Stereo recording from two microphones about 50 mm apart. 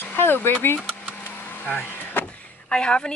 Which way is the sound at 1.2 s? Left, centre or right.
Left.